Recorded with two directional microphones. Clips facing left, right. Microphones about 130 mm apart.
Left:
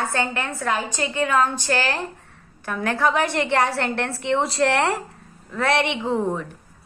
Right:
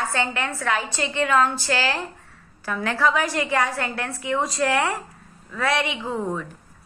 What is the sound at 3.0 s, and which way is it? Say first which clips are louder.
Speech: left 1 dB; 60° left (ahead or behind).